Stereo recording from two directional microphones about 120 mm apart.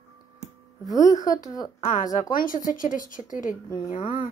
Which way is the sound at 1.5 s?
30° left (ahead or behind).